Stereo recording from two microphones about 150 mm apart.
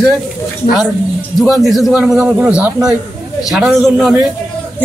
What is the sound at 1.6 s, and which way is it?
A man's voice, centre (ahead or behind).